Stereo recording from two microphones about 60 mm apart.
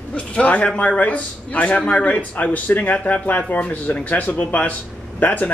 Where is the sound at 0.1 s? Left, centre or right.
Left.